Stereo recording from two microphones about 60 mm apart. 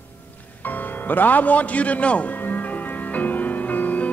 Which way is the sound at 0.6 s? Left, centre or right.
Left.